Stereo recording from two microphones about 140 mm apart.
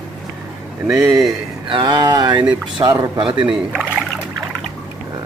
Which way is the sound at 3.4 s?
5° right (ahead or behind).